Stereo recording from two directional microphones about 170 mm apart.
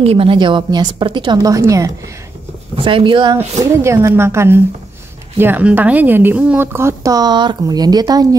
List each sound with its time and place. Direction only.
0.0 s a woman's voice: 35° right (ahead or behind); by 1.9 s 20° right (ahead or behind)
2.7 s a woman's voice: 30° right (ahead or behind)
3.3 s a woman's voice: 15° right (ahead or behind)